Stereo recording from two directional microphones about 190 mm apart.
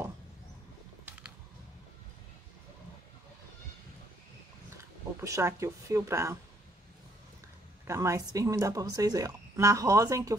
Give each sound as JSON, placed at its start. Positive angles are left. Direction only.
{"t": 1.0, "sound": "a sound", "side_deg": -5}
{"t": 4.7, "sound": "speech", "side_deg": -15}
{"t": 7.8, "sound": "speech", "side_deg": -15}